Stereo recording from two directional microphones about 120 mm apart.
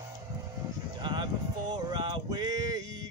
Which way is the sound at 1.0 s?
40° right (ahead or behind).